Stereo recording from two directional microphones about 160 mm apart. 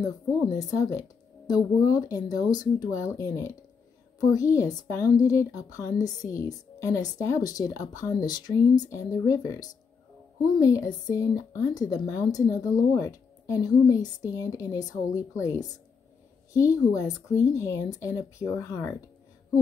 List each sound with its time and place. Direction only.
0.6 s speech: 20° left (ahead or behind)